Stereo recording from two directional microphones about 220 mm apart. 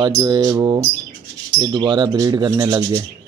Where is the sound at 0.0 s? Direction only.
20° right (ahead or behind).